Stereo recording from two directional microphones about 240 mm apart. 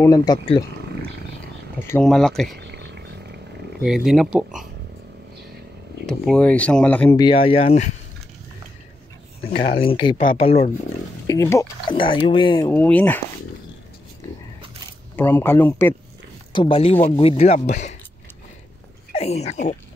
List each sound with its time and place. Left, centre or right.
0.0 s speech: centre
1.8 s speech: centre
2.6 s a sound: right
3.8 s speech: centre
6.0 s speech: centre
7.2 s speech: left
9.4 s speech: left
11.2 s speech: centre
15.1 s speech: centre
16.5 s speech: left
19.1 s speech: left